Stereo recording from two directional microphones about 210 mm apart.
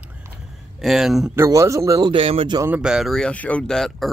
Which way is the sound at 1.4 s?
15° right (ahead or behind).